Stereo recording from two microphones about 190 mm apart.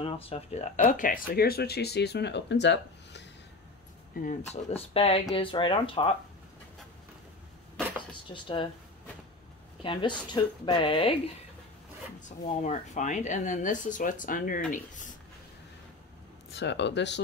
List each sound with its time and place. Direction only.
0.0 s speech: 30° left (ahead or behind); by 3.3 s 65° left (ahead or behind)
4.3 s speech: 35° left (ahead or behind)
8.1 s speech: 25° left (ahead or behind)
9.8 s speech: 25° left (ahead or behind)
12.6 s speech: 40° left (ahead or behind)
16.5 s speech: 65° left (ahead or behind)